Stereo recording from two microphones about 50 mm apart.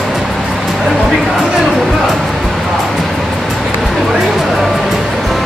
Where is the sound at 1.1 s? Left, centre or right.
Centre.